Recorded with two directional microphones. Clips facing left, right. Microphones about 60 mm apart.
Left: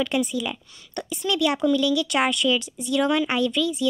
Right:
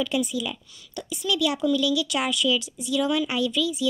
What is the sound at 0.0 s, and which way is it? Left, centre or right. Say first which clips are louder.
Speech: left 2 dB; left.